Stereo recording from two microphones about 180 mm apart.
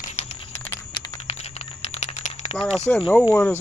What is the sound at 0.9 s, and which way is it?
Typing, 25° left (ahead or behind).